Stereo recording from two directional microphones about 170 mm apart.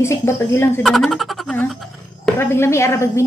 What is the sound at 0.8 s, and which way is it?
Speech, centre (ahead or behind).